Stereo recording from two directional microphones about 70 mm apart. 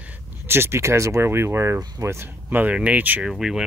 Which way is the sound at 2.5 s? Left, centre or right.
Right.